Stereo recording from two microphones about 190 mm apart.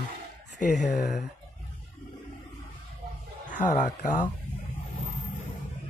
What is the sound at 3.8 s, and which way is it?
Speech, 40° left (ahead or behind).